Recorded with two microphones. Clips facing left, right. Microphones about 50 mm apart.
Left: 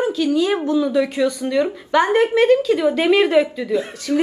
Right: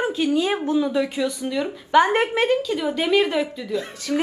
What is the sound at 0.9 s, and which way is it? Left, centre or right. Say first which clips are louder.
Speech: left 5 dB; left.